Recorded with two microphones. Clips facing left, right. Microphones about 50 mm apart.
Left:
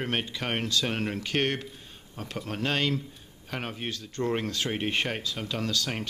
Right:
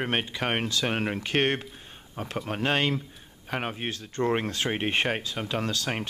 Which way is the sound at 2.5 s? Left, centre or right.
Right.